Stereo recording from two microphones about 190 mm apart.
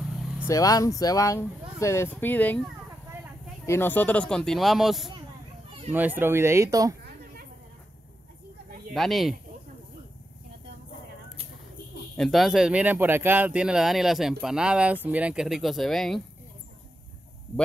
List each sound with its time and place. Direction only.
0.5 s speech: 20° left (ahead or behind); by 7.0 s 15° right (ahead or behind)
8.9 s speech: centre (ahead or behind)
12.2 s speech: centre (ahead or behind)